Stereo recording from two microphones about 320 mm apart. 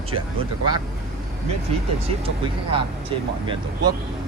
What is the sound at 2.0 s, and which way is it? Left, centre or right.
Speech, centre.